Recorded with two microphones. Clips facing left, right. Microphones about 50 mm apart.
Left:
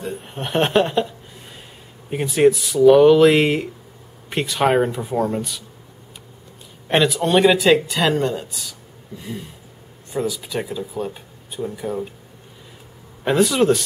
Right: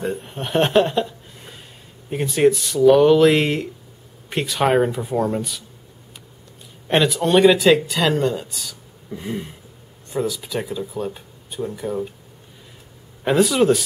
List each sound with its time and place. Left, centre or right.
0.2 s speech: centre
2.0 s speech: centre
6.9 s speech: centre
9.1 s a sound: right
10.0 s speech: centre
13.2 s speech: centre